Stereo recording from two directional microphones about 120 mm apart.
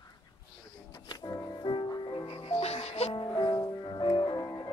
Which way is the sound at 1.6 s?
40° left (ahead or behind).